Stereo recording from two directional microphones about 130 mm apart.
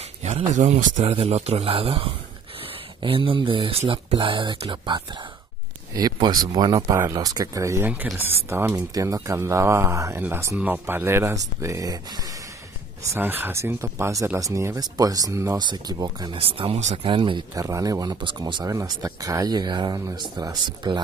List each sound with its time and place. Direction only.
0.5 s speech: 65° right (ahead or behind)
1.0 s speech: 50° right (ahead or behind); by 12.3 s 30° right (ahead or behind)
13.1 s speech: 15° right (ahead or behind); by 16.3 s 30° right (ahead or behind)
16.3 s speech: 45° right (ahead or behind)
17.6 s speech: 25° right (ahead or behind)